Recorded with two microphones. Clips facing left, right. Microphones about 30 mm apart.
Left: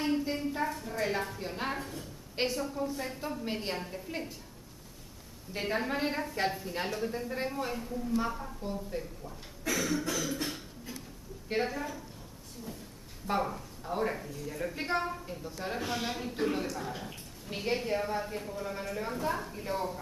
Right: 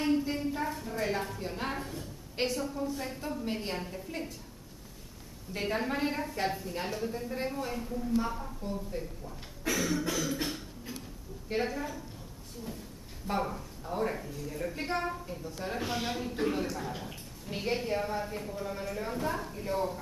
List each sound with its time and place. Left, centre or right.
0.0 s a woman's voice: centre
5.5 s speech: centre
7.7 s speech: centre
10.0 s a sound: centre
11.5 s speech: centre
13.3 s speech: centre